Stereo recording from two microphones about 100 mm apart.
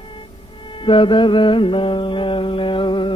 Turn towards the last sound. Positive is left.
turn(degrees=55)  # may be behind; listen again after turning